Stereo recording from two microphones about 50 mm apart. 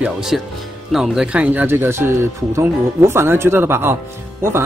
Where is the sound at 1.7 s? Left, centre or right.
Right.